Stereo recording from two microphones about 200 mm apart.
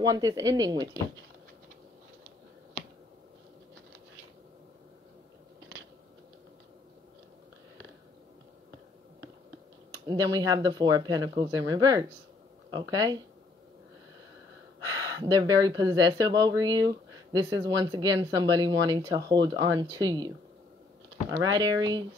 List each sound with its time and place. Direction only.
0.0 s speech: 20° right (ahead or behind)
10.0 s speech: 20° right (ahead or behind)
15.1 s speech: 20° right (ahead or behind)
21.3 s speech: 20° right (ahead or behind)